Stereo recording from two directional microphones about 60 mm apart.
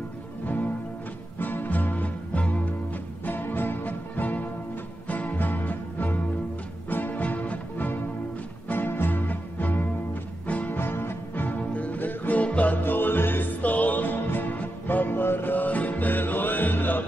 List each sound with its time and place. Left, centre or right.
0.5 s music: left
3.3 s music: left
10.8 s music: left